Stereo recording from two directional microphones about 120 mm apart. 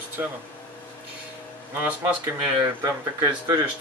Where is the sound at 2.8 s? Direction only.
25° right (ahead or behind).